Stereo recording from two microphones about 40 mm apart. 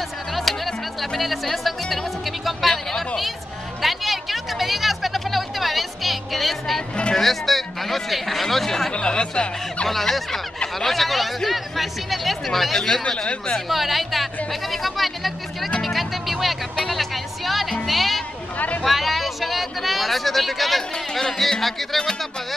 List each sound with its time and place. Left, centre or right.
0.4 s music: centre
3.8 s a sound: centre
7.2 s speech: centre
8.9 s speech: left
9.8 s speech: centre
13.0 s speech: left
13.7 s speech: centre
15.8 s music: centre
18.8 s a sound: centre
21.1 s speech: centre